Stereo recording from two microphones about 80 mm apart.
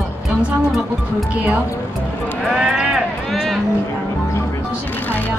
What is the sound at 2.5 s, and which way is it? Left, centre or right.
Sheep, centre.